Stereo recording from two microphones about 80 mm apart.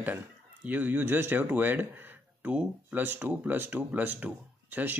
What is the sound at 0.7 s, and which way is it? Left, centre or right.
Speech, right.